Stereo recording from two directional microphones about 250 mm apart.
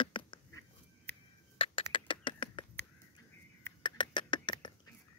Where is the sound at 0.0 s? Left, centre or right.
Centre.